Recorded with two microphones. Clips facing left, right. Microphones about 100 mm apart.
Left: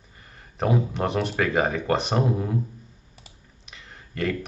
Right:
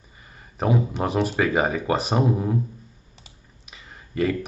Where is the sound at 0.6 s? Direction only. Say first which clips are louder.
Right 1 dB; centre (ahead or behind).